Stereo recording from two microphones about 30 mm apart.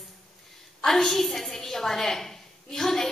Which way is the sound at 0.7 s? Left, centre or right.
Centre.